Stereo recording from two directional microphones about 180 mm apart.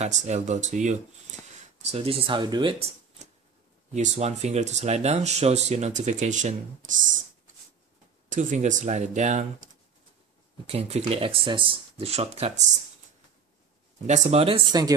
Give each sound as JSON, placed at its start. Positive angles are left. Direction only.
{"t": 0.0, "sound": "speech", "side_deg": -40}
{"t": 3.9, "sound": "speech", "side_deg": -40}
{"t": 8.3, "sound": "speech", "side_deg": -45}
{"t": 10.7, "sound": "speech", "side_deg": -35}
{"t": 14.0, "sound": "speech", "side_deg": -40}